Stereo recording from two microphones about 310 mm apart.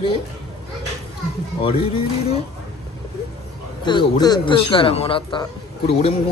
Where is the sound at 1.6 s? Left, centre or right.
Centre.